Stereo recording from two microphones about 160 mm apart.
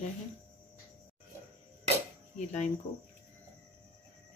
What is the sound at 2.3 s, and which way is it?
Speech, 45° left (ahead or behind).